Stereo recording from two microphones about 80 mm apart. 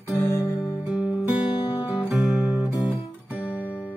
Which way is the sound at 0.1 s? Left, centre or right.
Left.